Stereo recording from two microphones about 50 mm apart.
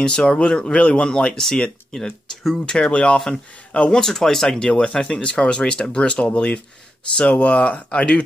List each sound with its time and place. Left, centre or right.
0.0 s speech: centre
2.0 s speech: centre
2.6 s speech: centre
4.0 s speech: centre